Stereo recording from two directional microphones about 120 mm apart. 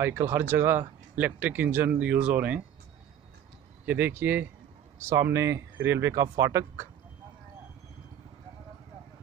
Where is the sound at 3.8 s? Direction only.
15° right (ahead or behind).